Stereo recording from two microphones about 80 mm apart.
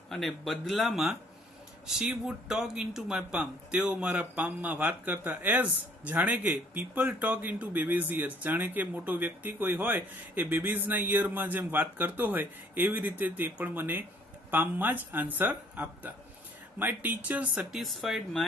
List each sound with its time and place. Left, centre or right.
0.1 s speech: centre
17.6 s speech: centre